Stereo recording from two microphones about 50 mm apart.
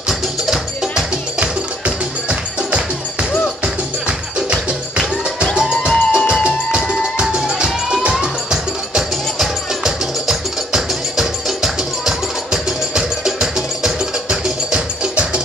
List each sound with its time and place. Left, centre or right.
1.4 s music: right
4.5 s music: right